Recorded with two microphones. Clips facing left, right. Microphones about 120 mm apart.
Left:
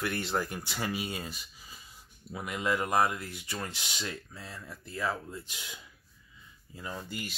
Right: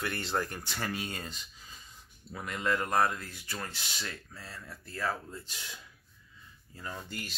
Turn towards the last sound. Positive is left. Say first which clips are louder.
# left 2 dB
turn(degrees=10)  # may be behind; listen again after turning